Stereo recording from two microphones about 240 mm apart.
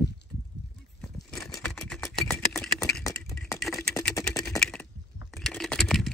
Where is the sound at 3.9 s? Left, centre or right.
Centre.